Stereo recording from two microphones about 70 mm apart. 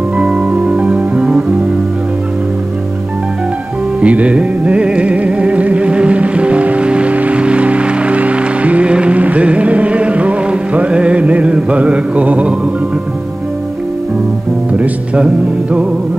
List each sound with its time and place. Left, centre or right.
0.2 s music: centre
4.0 s music: centre
14.7 s music: centre